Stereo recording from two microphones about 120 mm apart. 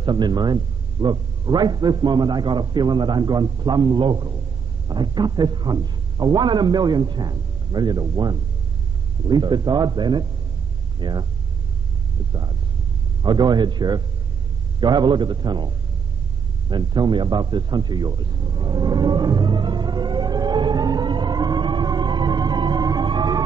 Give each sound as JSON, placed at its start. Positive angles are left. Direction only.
{"t": 0.0, "sound": "a man's voice", "side_deg": -35}
{"t": 13.2, "sound": "a man's voice", "side_deg": -35}
{"t": 16.6, "sound": "a sound", "side_deg": -35}